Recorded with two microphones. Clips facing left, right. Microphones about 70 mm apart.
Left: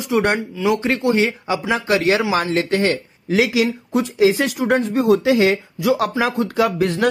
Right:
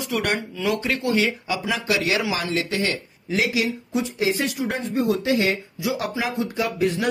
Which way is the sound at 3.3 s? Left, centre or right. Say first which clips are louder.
Left 6 dB; left.